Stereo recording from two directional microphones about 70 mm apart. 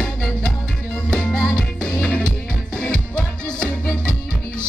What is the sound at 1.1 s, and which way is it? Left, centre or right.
Music, centre.